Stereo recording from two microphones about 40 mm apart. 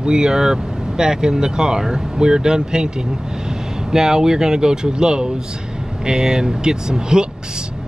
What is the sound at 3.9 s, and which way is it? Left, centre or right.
Speech, centre.